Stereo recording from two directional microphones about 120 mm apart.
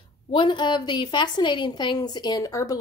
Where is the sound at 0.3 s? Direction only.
40° left (ahead or behind).